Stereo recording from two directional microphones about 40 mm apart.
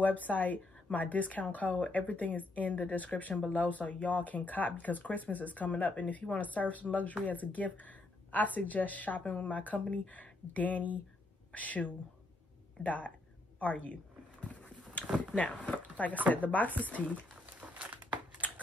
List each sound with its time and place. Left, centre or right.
0.0 s a woman's voice: left
14.4 s a sound: left
15.1 s speech: left
17.6 s crumpling: right